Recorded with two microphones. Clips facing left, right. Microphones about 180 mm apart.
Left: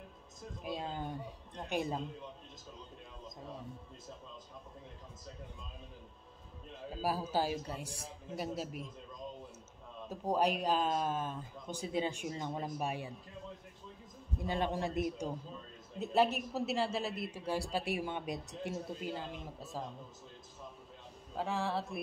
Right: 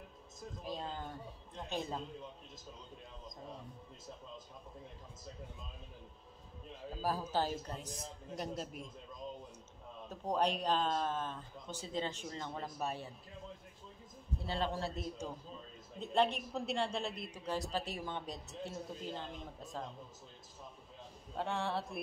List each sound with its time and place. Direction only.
0.7 s speech: 15° left (ahead or behind)
7.0 s speech: 10° left (ahead or behind)
10.0 s speech: 10° left (ahead or behind)
14.4 s speech: 15° left (ahead or behind)
21.4 s speech: centre (ahead or behind)